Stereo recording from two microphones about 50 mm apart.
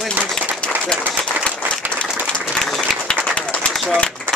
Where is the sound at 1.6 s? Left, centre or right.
Right.